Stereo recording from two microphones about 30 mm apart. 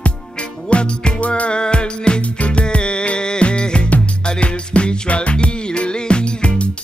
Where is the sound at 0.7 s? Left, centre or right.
Left.